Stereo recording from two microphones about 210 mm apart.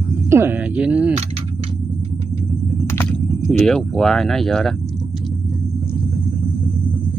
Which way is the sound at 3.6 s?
5° left (ahead or behind).